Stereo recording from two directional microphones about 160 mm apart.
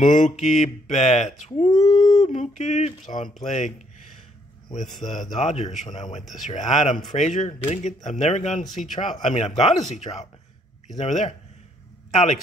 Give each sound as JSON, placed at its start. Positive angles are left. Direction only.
{"t": 0.0, "sound": "speech", "side_deg": 55}
{"t": 1.7, "sound": "a sound", "side_deg": 25}
{"t": 2.2, "sound": "speech", "side_deg": 45}
{"t": 5.0, "sound": "speech", "side_deg": 50}